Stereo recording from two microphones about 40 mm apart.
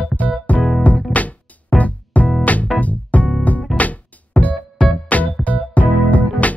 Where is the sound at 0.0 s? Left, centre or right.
Left.